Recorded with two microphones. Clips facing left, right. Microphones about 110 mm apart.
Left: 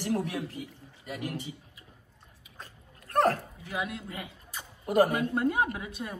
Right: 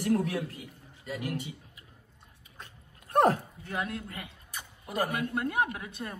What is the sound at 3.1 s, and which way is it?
Dog, 15° right (ahead or behind).